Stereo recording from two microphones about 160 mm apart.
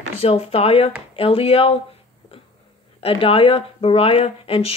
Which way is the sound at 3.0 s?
35° left (ahead or behind).